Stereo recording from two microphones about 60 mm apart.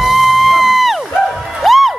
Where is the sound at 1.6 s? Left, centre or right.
Centre.